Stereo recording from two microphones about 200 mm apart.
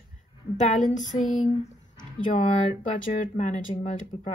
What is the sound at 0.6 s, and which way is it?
Speech, 40° left (ahead or behind).